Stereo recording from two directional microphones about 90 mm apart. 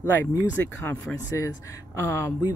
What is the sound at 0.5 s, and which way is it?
Speech, 20° left (ahead or behind).